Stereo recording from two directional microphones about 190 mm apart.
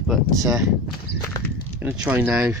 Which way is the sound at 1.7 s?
10° right (ahead or behind).